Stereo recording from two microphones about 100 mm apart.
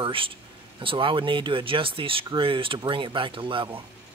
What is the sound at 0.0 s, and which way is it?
Speech, 60° right (ahead or behind).